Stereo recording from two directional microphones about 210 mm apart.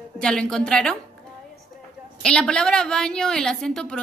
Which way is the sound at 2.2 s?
5° left (ahead or behind).